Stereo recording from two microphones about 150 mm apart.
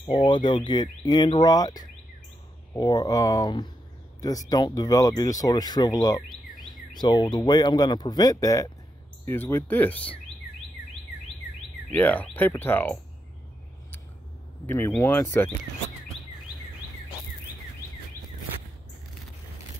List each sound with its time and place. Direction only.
0.0 s speech: 30° left (ahead or behind); by 10.1 s 10° left (ahead or behind)
11.9 s speech: 10° left (ahead or behind)
14.7 s speech: 15° left (ahead or behind)